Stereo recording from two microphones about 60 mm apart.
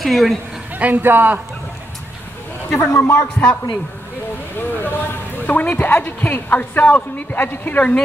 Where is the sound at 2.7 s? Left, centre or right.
Left.